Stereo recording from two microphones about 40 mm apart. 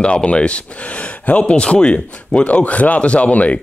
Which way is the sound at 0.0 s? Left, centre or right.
Left.